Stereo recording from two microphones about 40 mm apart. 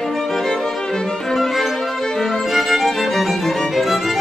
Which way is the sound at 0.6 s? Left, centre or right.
Centre.